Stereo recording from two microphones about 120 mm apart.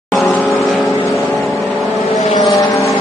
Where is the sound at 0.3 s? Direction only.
Centre (ahead or behind).